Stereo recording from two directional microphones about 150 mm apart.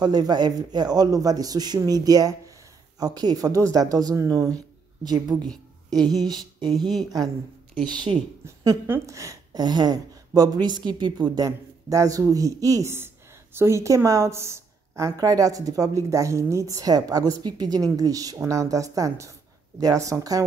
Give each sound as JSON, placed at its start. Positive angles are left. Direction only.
{"t": 0.0, "sound": "speech", "side_deg": -30}
{"t": 6.2, "sound": "a sound", "side_deg": -30}
{"t": 8.5, "sound": "speech", "side_deg": -15}